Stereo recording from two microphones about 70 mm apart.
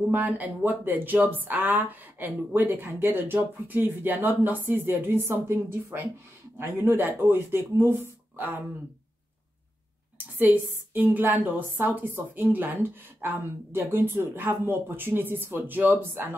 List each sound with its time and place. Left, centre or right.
0.1 s speech: right
10.1 s a sound: right
10.9 s speech: right